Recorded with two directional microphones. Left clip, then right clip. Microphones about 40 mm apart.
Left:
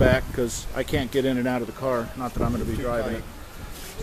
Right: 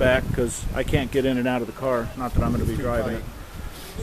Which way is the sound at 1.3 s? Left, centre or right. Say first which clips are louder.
Right 2 dB; centre.